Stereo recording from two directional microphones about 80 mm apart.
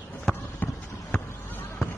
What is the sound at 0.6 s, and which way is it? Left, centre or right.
Basketball bounce, left.